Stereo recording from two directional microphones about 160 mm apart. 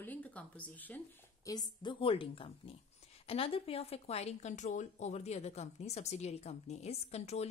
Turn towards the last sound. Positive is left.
turn(degrees=45)  # may be behind; listen again after turning